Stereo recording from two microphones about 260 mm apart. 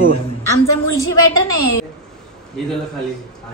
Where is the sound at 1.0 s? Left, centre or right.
Left.